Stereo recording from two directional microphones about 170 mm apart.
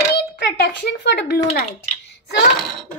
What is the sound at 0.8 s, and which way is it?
Speech, 70° left (ahead or behind).